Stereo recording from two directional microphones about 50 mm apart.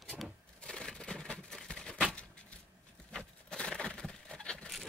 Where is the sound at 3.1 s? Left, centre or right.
Centre.